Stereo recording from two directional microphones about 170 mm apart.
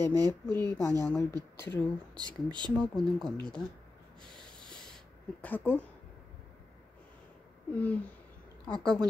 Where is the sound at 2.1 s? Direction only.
25° right (ahead or behind).